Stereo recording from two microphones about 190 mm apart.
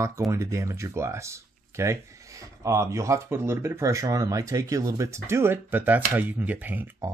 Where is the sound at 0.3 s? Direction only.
15° right (ahead or behind).